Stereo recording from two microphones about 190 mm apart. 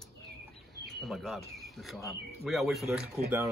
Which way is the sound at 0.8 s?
Centre (ahead or behind).